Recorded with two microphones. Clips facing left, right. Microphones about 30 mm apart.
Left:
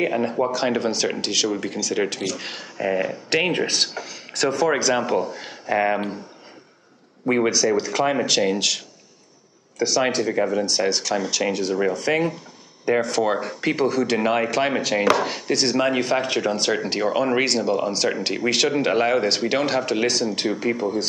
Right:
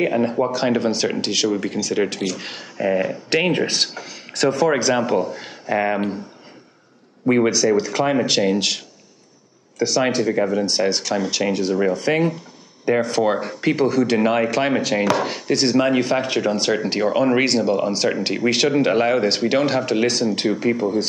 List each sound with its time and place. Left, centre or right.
0.0 s speech: centre
7.2 s speech: centre
8.5 s speech: centre
9.9 s speech: centre
10.9 s speech: centre
11.4 s speech: centre
12.9 s speech: right
13.2 s speech: centre